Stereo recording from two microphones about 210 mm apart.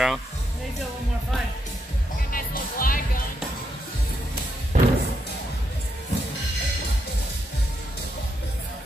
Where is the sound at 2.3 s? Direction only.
40° left (ahead or behind).